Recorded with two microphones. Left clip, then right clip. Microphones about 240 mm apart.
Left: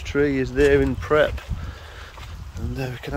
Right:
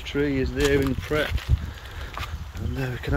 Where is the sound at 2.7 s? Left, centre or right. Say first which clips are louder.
Even; centre.